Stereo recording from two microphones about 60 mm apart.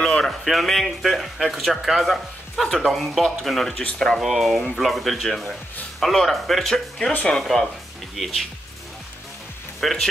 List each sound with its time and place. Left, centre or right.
0.0 s speech: centre
9.8 s speech: centre